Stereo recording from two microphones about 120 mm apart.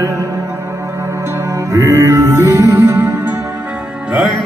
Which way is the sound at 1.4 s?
25° right (ahead or behind).